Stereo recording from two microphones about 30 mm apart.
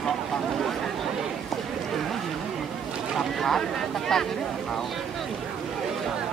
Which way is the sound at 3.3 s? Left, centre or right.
Centre.